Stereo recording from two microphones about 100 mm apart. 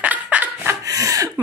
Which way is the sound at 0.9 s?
35° right (ahead or behind).